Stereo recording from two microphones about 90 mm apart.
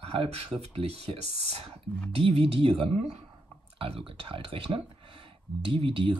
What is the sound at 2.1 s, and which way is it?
Speech, 90° right.